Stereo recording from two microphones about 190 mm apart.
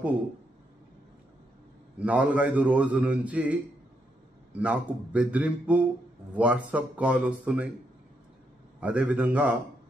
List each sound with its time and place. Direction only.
2.0 s a man's voice: 10° right (ahead or behind)
8.8 s a man's voice: 5° right (ahead or behind)